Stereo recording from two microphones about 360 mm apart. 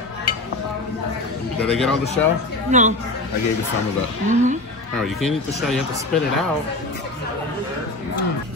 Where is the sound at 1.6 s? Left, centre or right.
Centre.